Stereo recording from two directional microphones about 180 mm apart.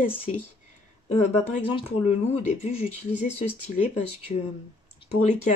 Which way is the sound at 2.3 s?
35° left (ahead or behind).